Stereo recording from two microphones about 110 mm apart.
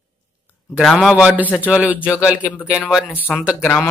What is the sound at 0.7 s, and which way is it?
Speech, centre (ahead or behind).